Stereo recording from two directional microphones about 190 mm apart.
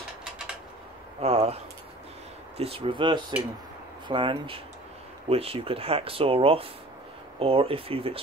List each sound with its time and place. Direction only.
1.2 s speech: 30° right (ahead or behind)